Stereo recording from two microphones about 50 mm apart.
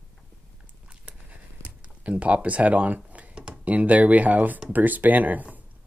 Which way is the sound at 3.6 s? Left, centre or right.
Right.